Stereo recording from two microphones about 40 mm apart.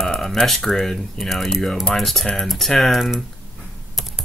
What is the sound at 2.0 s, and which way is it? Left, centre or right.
Speech, centre.